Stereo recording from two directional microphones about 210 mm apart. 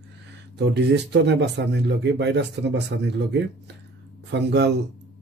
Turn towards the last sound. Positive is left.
turn(degrees=-55)  # may be behind; listen again after turning